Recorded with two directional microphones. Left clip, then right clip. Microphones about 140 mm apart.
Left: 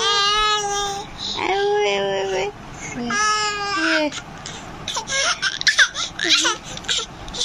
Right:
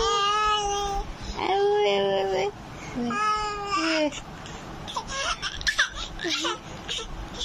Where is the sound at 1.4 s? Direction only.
25° right (ahead or behind).